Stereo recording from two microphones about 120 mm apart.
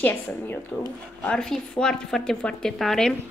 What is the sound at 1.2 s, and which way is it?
Speech, 5° left (ahead or behind).